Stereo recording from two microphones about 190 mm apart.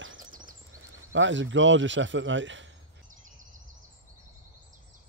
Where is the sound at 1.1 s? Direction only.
80° right.